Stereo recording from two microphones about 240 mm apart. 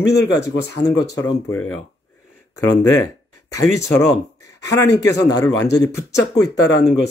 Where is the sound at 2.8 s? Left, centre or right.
Centre.